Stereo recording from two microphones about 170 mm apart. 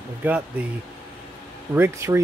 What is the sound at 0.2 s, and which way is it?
Speech, 10° right (ahead or behind).